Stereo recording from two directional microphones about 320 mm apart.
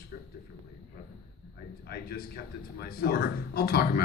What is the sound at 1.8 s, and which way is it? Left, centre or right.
Speech, left.